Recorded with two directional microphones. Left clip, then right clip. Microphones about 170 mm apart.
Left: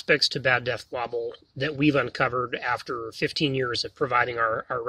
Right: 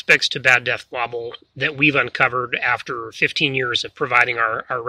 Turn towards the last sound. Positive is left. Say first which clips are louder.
# right 5 dB
turn(degrees=-10)  # may be behind; listen again after turning